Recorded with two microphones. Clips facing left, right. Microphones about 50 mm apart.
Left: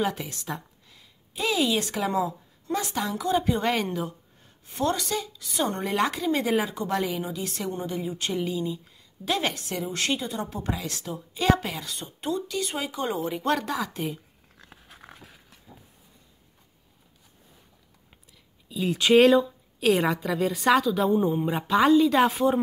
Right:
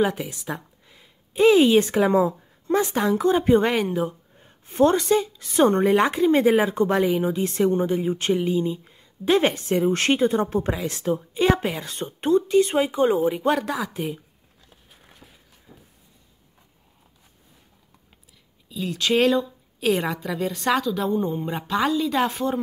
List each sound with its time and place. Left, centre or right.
0.2 s speech: centre
0.8 s a woman's voice: right
3.7 s speech: centre
4.0 s a woman's voice: right
5.9 s a woman's voice: right
13.3 s speech: centre
18.9 s speech: centre
19.3 s a woman's voice: centre